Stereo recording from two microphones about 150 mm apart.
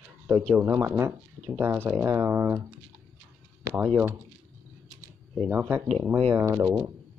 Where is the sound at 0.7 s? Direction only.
15° right (ahead or behind).